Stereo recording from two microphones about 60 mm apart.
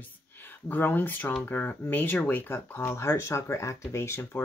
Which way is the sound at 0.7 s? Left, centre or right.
Left.